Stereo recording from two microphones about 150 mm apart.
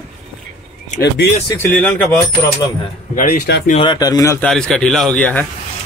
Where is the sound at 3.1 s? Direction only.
60° left (ahead or behind).